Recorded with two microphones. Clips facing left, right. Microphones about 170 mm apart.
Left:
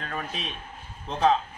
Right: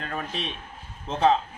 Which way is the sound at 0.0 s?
Centre (ahead or behind).